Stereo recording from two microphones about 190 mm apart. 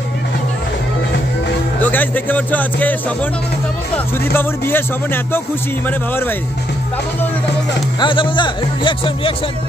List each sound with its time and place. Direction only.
1.8 s speech: 10° left (ahead or behind)
8.0 s speech: 25° left (ahead or behind)